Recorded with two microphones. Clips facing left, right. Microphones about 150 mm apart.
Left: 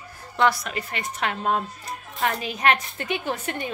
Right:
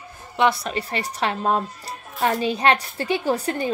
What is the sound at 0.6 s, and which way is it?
A woman's voice, 30° right (ahead or behind).